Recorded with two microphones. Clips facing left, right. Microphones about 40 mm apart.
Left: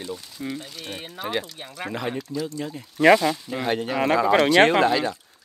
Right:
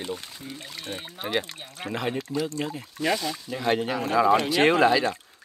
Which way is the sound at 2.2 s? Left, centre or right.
Right.